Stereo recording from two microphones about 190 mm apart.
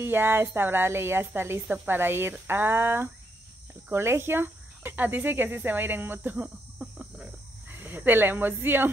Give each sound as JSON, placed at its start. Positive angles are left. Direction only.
{"t": 0.0, "sound": "speech", "side_deg": -10}